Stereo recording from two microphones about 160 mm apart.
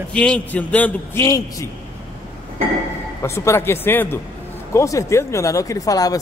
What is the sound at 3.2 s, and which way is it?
A man's voice, 15° left (ahead or behind).